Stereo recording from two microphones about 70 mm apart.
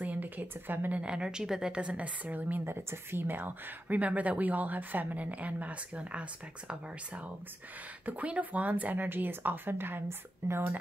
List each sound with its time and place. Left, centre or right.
0.0 s a woman's voice: right
8.0 s a woman's voice: right